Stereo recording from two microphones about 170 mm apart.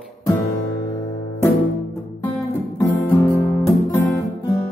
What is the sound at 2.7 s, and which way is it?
Guitar, 20° left (ahead or behind).